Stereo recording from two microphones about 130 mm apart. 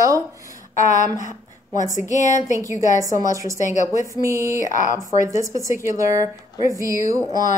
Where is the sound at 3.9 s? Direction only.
25° right (ahead or behind).